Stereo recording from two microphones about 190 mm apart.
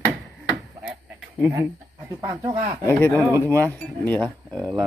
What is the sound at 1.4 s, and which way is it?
Speech, 15° right (ahead or behind).